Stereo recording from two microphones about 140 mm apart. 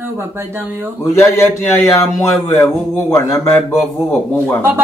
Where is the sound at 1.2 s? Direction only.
20° left (ahead or behind).